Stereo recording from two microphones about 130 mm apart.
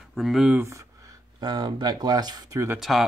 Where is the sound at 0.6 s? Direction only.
20° right (ahead or behind).